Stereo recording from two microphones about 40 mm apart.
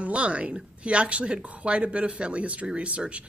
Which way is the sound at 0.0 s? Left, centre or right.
Right.